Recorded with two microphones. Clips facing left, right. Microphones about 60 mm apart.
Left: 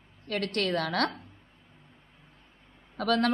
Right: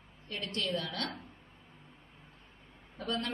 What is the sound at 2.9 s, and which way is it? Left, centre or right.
Speech, left.